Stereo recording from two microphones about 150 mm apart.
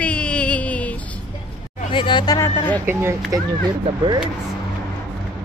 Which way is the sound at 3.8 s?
30° right (ahead or behind).